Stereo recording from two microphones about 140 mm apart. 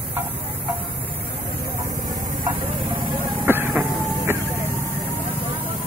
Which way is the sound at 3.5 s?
15° right (ahead or behind).